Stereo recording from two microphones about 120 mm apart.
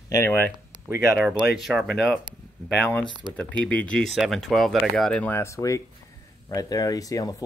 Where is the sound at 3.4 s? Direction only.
10° left (ahead or behind).